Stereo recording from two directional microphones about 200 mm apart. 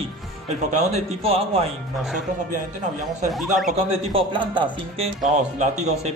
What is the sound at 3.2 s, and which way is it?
Speech, centre (ahead or behind).